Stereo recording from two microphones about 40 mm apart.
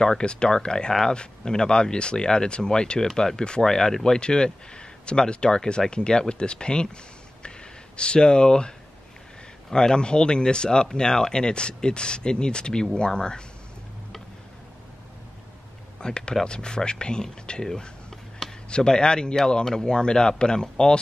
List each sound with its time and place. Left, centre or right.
0.0 s speech: centre
3.3 s speech: left
3.6 s speech: centre
16.0 s speech: left